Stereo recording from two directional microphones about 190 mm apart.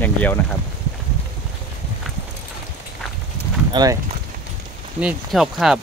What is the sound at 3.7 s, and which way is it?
Speech, 20° right (ahead or behind).